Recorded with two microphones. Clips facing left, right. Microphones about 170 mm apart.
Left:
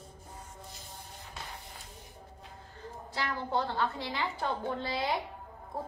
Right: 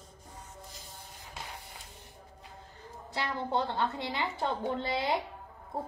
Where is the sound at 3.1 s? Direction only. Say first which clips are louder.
Right 1 dB; 20° right (ahead or behind).